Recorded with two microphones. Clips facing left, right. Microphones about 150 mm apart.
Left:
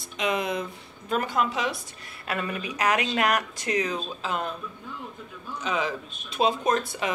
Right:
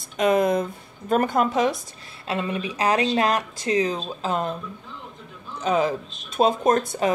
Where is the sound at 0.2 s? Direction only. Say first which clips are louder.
Right 8 dB; 45° right (ahead or behind).